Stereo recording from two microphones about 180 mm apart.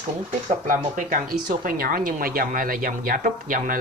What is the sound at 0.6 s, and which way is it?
Speech, 45° right (ahead or behind).